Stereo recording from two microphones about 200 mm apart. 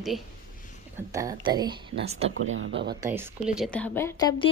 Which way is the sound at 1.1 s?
20° right (ahead or behind).